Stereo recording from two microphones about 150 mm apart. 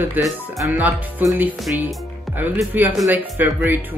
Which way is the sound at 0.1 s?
10° right (ahead or behind).